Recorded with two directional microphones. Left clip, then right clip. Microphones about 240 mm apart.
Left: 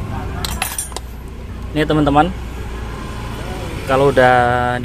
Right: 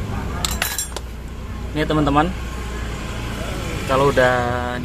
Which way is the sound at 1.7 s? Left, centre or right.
Centre.